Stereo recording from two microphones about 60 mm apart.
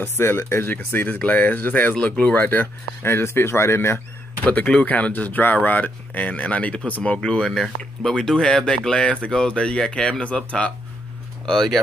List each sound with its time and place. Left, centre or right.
0.0 s speech: left
3.1 s speech: left
4.5 s speech: left
11.4 s speech: centre